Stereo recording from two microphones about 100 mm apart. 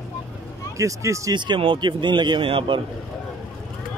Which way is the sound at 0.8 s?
30° right (ahead or behind).